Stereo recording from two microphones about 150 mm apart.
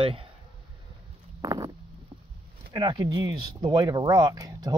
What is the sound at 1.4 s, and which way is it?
Speech, 25° right (ahead or behind).